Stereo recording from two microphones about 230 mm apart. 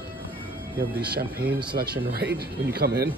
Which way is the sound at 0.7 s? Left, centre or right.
Right.